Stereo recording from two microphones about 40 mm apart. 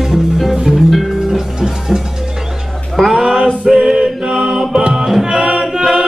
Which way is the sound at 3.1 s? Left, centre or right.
Centre.